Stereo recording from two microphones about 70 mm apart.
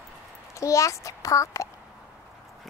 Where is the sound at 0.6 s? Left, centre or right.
Left.